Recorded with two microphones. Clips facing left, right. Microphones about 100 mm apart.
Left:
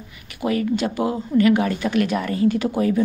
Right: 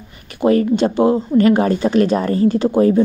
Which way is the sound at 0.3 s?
35° right (ahead or behind).